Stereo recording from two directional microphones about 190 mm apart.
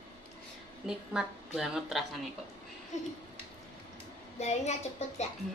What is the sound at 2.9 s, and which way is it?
Speech, 40° left (ahead or behind).